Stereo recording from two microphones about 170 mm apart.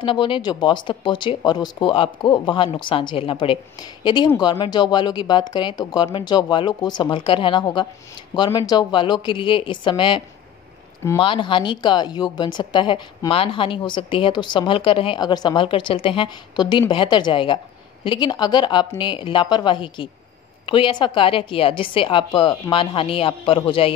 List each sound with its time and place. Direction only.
0.0 s a woman's voice: 30° left (ahead or behind)